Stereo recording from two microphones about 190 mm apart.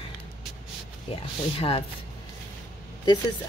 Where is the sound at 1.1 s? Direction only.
30° left (ahead or behind).